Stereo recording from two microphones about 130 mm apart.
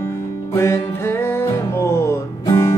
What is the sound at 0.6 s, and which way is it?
Music, 20° left (ahead or behind).